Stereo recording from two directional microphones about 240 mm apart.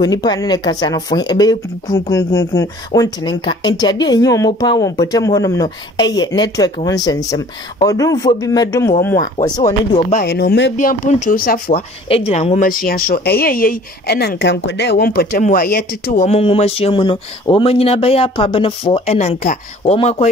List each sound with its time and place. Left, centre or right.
0.0 s speech: centre
9.1 s speech: left
9.7 s speech: left
10.2 s speech: left